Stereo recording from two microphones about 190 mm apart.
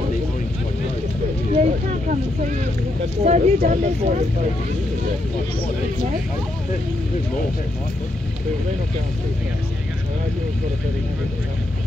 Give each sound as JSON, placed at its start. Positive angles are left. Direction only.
{"t": 1.5, "sound": "boat", "side_deg": -40}
{"t": 3.3, "sound": "speech", "side_deg": -40}